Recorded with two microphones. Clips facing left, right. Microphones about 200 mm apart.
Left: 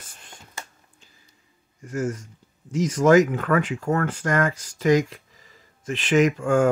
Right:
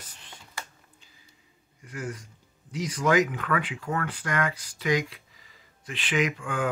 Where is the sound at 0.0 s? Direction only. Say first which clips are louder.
Left 1 dB; 50° left (ahead or behind).